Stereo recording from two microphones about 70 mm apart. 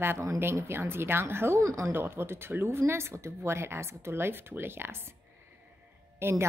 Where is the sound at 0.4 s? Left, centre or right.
Right.